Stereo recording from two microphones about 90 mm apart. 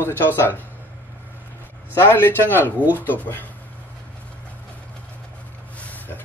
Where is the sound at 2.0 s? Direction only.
25° left (ahead or behind).